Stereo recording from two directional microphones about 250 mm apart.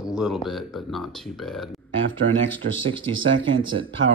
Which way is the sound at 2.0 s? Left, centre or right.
Right.